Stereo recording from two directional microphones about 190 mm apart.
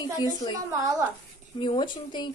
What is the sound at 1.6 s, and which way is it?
Speech, 25° left (ahead or behind).